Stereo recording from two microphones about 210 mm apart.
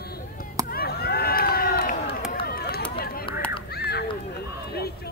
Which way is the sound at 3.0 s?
45° left (ahead or behind).